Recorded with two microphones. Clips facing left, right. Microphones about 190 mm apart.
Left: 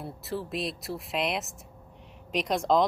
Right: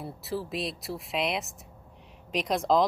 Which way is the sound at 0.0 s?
Centre (ahead or behind).